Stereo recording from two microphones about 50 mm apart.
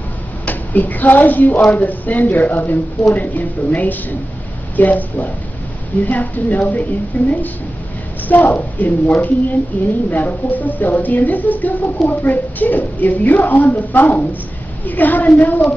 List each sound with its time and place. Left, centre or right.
0.5 s speech: left